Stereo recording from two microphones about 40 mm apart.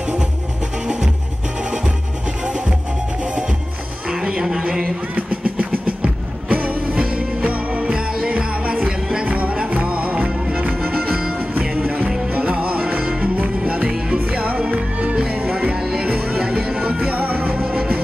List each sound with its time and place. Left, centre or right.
0.0 s music: right
2.4 s music: right
5.1 s music: right
10.3 s music: centre
10.9 s music: right
13.8 s music: right
14.2 s music: right
15.7 s music: right
16.1 s music: right
17.6 s music: right